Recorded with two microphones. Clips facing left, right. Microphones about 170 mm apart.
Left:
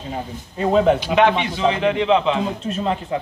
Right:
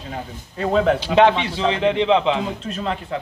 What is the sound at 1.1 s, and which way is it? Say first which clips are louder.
A man's voice: right 1 dB; 30° right (ahead or behind).